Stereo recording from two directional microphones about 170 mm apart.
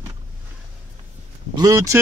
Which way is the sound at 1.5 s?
20° right (ahead or behind).